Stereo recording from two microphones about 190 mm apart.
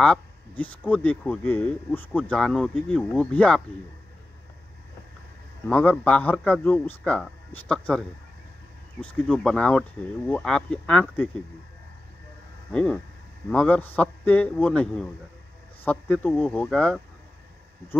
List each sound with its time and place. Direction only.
0.0 s speech: 5° left (ahead or behind)
5.7 s speech: 5° left (ahead or behind)
12.7 s speech: 5° left (ahead or behind)